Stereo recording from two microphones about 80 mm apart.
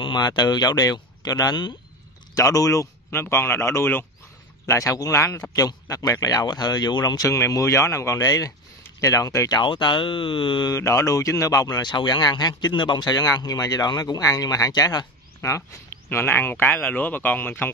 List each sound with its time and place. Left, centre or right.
0.0 s speech: left
2.3 s speech: left
3.1 s speech: left
5.1 s speech: left
5.5 s speech: left
7.2 s speech: left
9.5 s speech: left
10.7 s speech: left
16.1 s speech: left